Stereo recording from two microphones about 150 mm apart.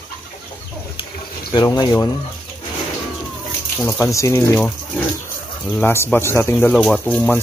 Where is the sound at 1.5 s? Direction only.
25° left (ahead or behind).